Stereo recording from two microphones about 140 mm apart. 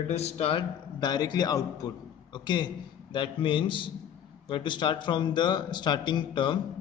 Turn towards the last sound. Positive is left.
turn(degrees=35)  # may be behind; listen again after turning